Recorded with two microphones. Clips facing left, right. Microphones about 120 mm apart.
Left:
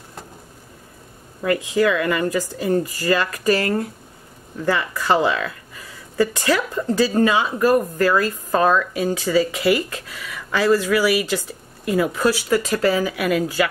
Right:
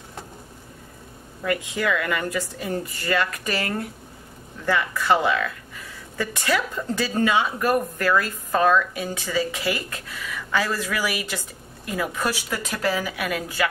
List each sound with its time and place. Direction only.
1.8 s speech: 35° left (ahead or behind)